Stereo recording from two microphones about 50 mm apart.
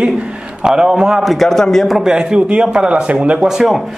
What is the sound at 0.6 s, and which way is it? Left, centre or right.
Speech, centre.